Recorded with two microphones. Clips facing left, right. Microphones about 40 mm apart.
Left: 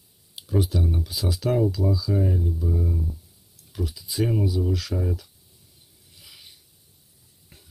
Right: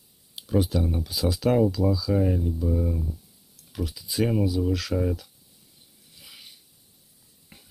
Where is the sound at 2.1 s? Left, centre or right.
Right.